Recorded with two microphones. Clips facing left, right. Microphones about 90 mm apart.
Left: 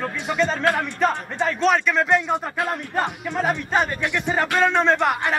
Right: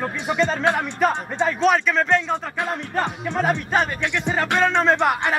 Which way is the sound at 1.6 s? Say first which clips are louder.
Even; centre (ahead or behind).